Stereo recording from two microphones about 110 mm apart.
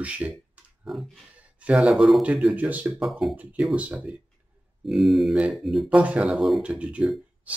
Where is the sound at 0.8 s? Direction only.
Centre (ahead or behind).